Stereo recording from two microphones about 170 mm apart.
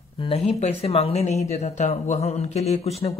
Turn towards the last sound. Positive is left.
turn(degrees=40)  # may be behind; listen again after turning